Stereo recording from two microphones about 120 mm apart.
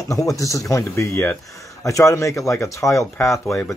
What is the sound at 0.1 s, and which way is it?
Speech, 25° left (ahead or behind).